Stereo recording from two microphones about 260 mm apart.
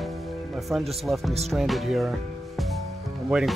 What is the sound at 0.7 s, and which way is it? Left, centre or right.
Speech, centre.